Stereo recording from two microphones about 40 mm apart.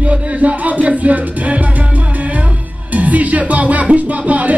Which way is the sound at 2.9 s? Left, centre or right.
Right.